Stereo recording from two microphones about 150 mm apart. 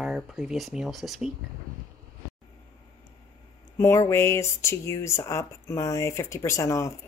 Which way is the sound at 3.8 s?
20° left (ahead or behind).